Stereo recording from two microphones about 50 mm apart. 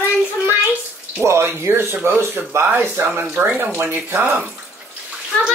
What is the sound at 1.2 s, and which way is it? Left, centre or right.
Speech, right.